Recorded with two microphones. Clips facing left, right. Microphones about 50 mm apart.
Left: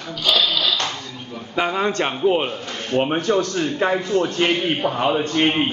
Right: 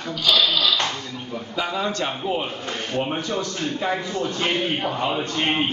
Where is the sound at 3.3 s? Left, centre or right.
Left.